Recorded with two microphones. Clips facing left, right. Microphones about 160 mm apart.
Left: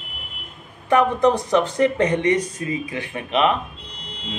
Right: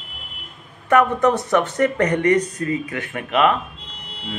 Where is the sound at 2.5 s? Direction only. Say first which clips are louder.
Right 2 dB; 15° left (ahead or behind).